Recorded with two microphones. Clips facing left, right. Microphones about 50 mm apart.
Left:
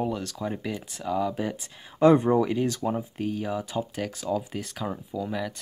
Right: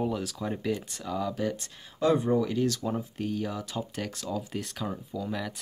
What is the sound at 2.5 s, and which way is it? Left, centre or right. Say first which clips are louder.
Speech: left 2 dB; left.